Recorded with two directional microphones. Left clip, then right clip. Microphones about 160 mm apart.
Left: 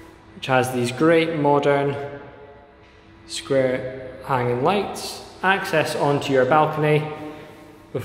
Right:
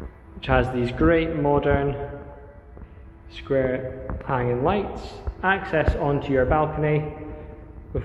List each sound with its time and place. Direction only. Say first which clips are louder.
0.4 s a man's voice: left 2 dB; 10° left (ahead or behind)
3.3 s a man's voice: left 3 dB; 15° left (ahead or behind)